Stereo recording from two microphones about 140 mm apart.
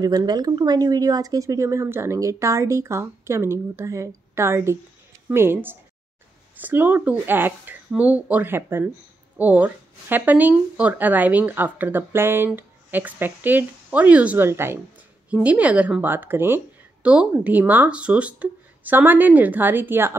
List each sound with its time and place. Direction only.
0.0 s speech: 25° right (ahead or behind)